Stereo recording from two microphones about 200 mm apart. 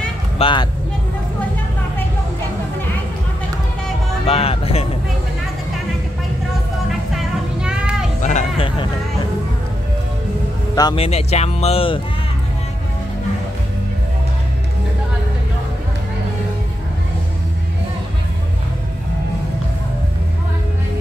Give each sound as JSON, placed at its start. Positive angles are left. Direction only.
{"t": 0.4, "sound": "speech", "side_deg": 25}
{"t": 4.3, "sound": "music", "side_deg": 30}
{"t": 6.9, "sound": "vehicle", "side_deg": -5}
{"t": 8.2, "sound": "a sound", "side_deg": 35}
{"t": 10.8, "sound": "speech", "side_deg": 25}